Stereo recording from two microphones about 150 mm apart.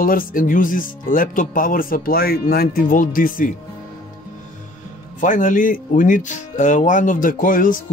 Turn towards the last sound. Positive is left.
turn(degrees=65)  # may be behind; listen again after turning